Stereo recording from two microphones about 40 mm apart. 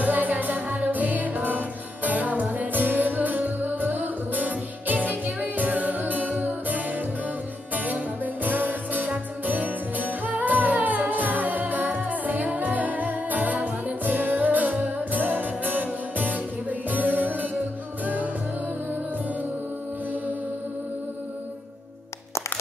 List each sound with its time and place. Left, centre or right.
0.0 s music: right